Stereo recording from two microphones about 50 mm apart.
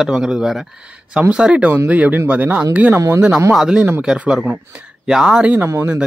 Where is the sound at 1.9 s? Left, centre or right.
Right.